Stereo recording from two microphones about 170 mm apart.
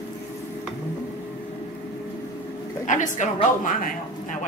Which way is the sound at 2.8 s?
50° left (ahead or behind).